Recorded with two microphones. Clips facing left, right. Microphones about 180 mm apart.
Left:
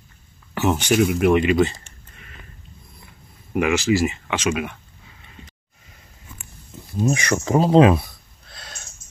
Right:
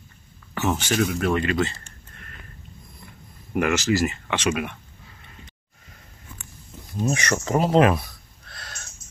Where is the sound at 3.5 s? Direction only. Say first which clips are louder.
Left 3 dB; centre (ahead or behind).